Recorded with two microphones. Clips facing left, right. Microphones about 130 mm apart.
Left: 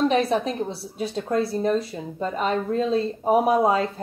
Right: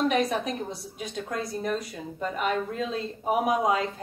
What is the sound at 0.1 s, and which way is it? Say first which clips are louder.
Speech: left 4 dB; 30° left (ahead or behind).